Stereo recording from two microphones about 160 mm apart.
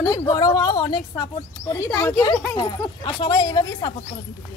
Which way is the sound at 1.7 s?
15° left (ahead or behind).